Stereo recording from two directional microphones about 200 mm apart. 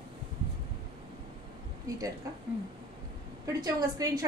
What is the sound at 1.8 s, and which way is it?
Speech, 15° right (ahead or behind).